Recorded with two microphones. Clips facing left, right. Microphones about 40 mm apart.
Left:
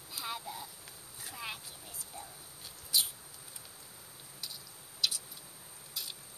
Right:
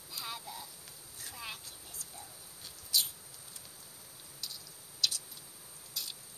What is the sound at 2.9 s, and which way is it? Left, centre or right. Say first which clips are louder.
Rodents: even; centre.